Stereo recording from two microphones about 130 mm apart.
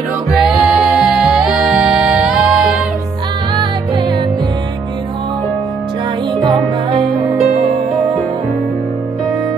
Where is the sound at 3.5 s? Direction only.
35° right (ahead or behind).